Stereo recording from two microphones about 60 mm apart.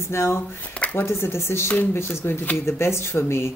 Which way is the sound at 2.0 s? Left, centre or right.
Left.